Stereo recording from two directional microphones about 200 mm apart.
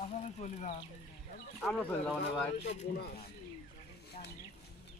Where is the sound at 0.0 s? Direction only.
35° left (ahead or behind).